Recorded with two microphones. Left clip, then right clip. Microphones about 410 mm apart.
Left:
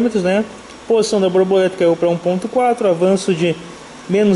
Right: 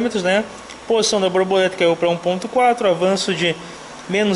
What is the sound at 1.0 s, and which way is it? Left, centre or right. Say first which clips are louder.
Speech: left 2 dB; centre.